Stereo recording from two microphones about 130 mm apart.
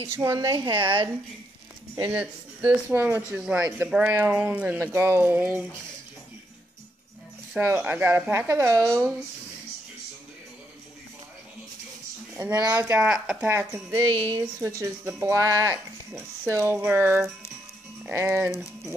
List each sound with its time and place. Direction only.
0.1 s a woman's voice: 25° right (ahead or behind); by 1.0 s 40° right (ahead or behind)
2.0 s speech: 15° right (ahead or behind)
3.6 s speech: 20° right (ahead or behind)
7.5 s speech: 15° right (ahead or behind)
12.4 s speech: 10° right (ahead or behind)